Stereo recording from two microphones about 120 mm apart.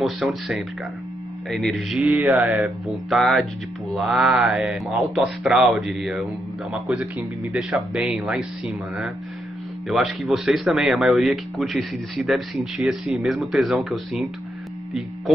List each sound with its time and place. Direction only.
0.0 s speech: centre (ahead or behind)